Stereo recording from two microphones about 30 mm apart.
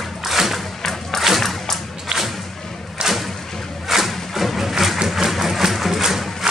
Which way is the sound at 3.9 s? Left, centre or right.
Centre.